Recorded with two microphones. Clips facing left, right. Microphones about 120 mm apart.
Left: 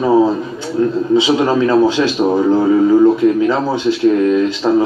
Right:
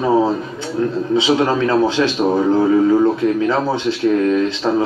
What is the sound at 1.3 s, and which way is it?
A man's voice, 15° left (ahead or behind).